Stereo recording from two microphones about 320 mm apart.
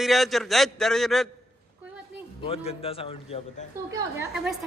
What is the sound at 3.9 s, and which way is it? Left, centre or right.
Speech, centre.